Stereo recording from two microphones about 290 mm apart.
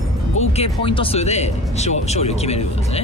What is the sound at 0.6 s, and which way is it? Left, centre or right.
Speech, centre.